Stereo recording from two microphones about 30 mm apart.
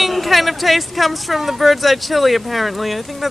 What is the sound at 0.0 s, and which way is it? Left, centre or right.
Speech, centre.